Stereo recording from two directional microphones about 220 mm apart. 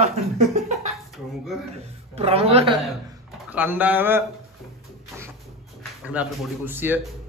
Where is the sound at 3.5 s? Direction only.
5° right (ahead or behind).